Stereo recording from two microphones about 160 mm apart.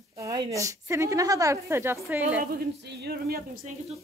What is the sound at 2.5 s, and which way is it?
Speech, 75° right (ahead or behind).